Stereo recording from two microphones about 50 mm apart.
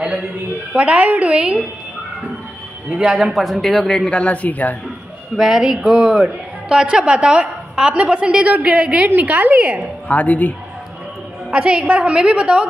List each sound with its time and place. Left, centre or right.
0.7 s a woman's voice: right
3.1 s speech: centre
4.1 s speech: left
5.3 s a woman's voice: centre; by 9.8 s right
10.0 s speech: left
11.5 s a woman's voice: centre